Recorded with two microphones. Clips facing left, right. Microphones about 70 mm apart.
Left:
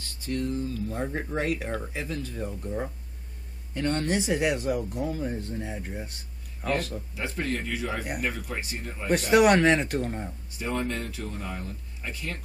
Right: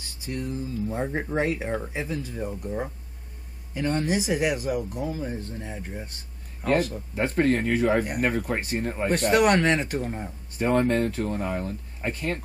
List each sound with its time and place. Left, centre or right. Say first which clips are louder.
0.0 s speech: left 2 dB; centre
7.2 s speech: right 9 dB; right
9.1 s speech: left 1 dB; centre
10.6 s speech: right 8 dB; right